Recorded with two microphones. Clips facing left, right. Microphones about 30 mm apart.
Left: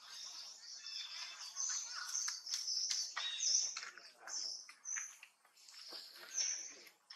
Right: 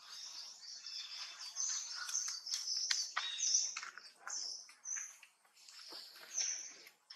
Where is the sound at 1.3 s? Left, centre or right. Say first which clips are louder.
Right 2 dB; right.